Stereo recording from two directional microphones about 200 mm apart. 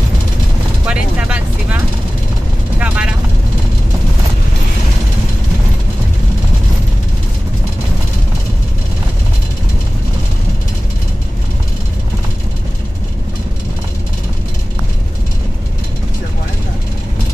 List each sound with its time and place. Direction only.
0.8 s vehicle: 5° right (ahead or behind)
2.8 s vehicle: 5° right (ahead or behind)